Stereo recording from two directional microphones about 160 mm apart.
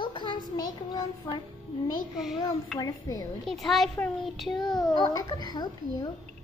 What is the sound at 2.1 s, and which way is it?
Speech, centre (ahead or behind).